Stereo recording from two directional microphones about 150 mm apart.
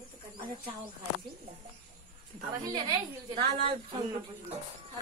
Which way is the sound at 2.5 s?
30° right (ahead or behind).